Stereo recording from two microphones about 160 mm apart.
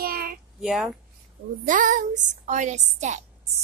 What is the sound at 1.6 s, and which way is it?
A woman's voice, 55° right (ahead or behind).